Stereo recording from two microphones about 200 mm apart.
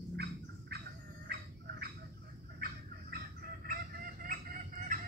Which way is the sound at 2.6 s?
45° right (ahead or behind).